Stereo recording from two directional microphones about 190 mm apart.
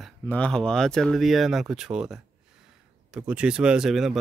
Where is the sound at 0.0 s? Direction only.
5° left (ahead or behind).